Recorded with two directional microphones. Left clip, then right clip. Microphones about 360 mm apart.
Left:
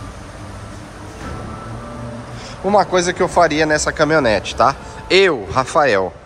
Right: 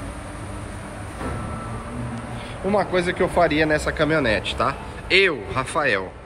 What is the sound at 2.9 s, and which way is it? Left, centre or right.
Speech, centre.